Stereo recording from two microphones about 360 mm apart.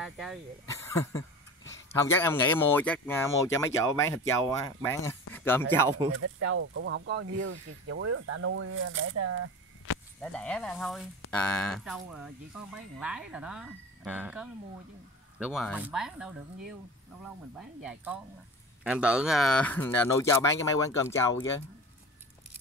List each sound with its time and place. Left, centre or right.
0.0 s speech: centre
4.4 s speech: centre
5.9 s speech: centre
6.1 s speech: right
9.9 s a sound: left
10.2 s speech: centre
17.8 s speech: centre